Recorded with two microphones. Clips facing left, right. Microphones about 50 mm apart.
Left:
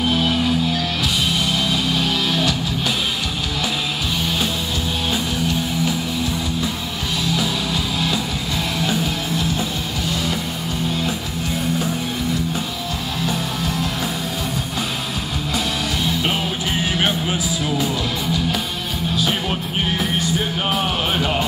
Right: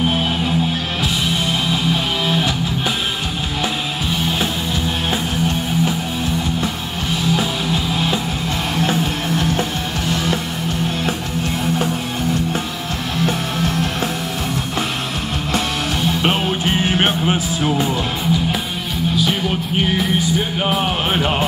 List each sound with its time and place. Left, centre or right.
1.7 s music: right
5.1 s music: right
7.3 s music: right
13.2 s music: right
16.2 s music: right
20.8 s music: right